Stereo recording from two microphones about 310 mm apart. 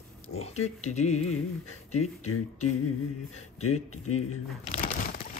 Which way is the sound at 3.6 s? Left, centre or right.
Left.